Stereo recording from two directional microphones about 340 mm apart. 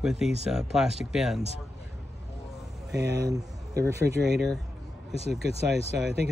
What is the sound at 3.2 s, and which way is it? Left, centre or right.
Speech, centre.